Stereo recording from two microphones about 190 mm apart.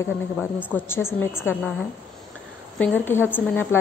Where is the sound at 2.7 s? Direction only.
10° left (ahead or behind).